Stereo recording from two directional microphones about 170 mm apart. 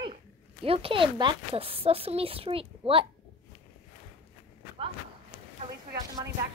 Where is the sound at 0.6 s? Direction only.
35° right (ahead or behind).